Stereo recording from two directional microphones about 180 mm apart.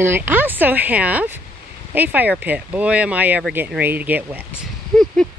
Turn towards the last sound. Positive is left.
turn(degrees=5)  # may be behind; listen again after turning